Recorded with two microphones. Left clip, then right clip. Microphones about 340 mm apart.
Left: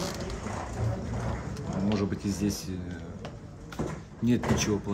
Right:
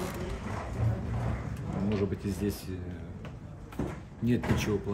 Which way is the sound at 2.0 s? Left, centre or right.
Centre.